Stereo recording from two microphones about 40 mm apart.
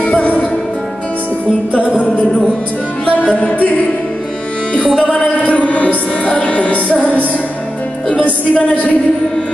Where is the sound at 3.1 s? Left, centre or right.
Left.